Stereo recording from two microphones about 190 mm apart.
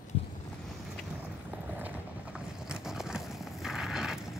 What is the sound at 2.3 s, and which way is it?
Vehicle, 5° right (ahead or behind).